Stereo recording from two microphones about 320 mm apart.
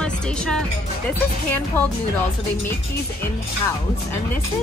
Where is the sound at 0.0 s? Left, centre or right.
Centre.